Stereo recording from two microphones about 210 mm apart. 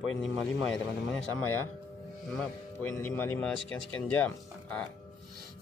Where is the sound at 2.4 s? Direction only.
10° left (ahead or behind).